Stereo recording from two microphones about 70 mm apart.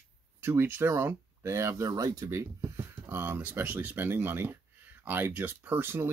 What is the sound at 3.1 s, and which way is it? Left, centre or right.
Speech, right.